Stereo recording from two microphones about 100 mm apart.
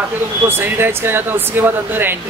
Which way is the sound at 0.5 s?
20° right (ahead or behind).